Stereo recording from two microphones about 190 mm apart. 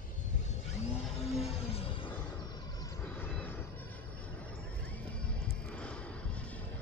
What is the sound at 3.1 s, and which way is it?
Vehicle, 10° left (ahead or behind).